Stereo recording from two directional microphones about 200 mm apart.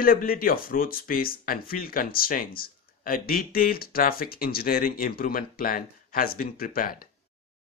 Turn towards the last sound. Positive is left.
turn(degrees=45)  # may be behind; listen again after turning